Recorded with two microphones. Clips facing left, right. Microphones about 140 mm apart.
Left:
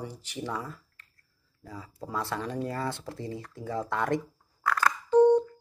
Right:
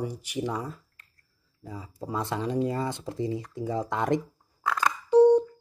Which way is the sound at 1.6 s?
20° right (ahead or behind).